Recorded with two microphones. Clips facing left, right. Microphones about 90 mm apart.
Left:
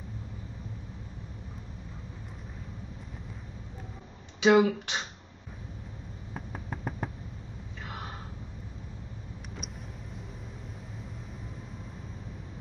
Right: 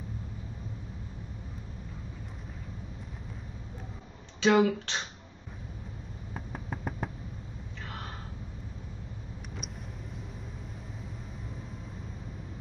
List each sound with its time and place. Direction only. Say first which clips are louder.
4.4 s speech: left 2 dB; 15° left (ahead or behind)
6.3 s fireworks: even; centre (ahead or behind)
7.8 s a sound: left 1 dB; 15° left (ahead or behind)
9.6 s vehicle: even; centre (ahead or behind)